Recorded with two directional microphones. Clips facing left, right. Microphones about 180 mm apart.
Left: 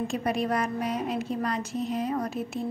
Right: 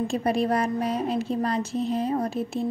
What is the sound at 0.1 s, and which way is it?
A woman's voice, 30° right (ahead or behind).